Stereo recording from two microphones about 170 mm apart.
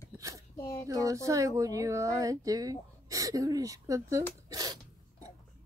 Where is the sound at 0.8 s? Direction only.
20° right (ahead or behind).